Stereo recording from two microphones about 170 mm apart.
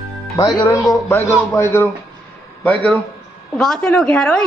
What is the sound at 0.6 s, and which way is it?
Speech, 15° left (ahead or behind).